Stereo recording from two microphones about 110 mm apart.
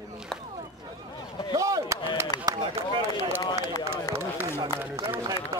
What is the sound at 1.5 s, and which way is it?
Chop, 30° right (ahead or behind).